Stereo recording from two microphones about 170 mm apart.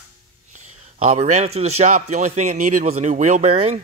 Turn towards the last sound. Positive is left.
turn(degrees=-35)  # may be behind; listen again after turning